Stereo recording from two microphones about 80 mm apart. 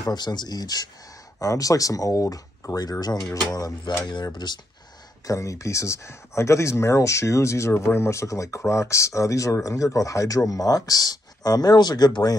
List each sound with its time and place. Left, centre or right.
0.0 s speech: left
5.2 s speech: left